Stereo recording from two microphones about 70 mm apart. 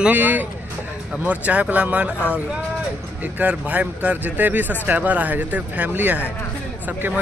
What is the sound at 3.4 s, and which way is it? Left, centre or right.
Speech, right.